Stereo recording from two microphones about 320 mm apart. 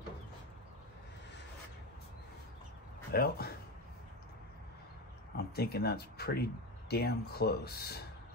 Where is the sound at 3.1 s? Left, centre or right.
Left.